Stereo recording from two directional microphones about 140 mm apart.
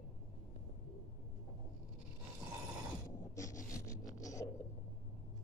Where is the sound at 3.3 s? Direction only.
25° left (ahead or behind).